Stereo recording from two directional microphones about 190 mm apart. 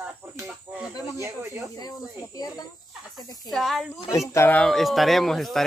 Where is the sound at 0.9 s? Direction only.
20° left (ahead or behind).